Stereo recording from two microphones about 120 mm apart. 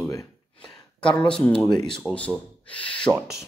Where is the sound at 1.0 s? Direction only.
40° left (ahead or behind).